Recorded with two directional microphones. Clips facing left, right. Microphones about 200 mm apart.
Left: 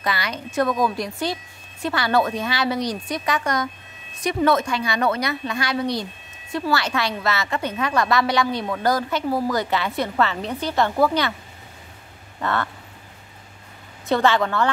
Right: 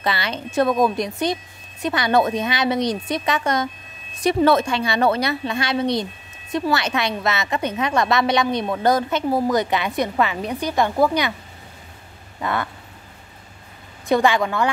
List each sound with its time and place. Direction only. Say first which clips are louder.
0.0 s a woman's voice: right 2 dB; 25° right (ahead or behind)
12.4 s quack: even; 15° right (ahead or behind)
14.0 s a woman's voice: right 1 dB; 15° right (ahead or behind)